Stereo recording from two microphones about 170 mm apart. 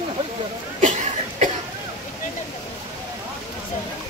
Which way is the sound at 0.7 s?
45° right (ahead or behind).